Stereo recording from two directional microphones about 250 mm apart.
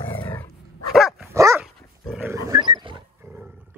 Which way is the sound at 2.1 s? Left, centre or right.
Centre.